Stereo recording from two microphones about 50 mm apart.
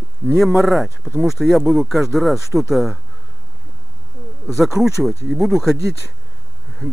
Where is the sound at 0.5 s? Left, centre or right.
Centre.